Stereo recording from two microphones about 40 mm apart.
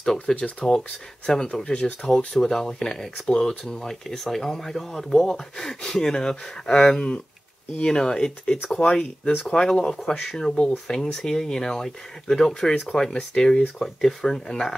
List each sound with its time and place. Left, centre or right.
0.0 s speech: centre
9.6 s speech: left
10.9 s speech: centre